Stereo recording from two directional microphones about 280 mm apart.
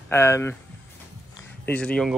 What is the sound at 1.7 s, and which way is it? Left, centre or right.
Speech, centre.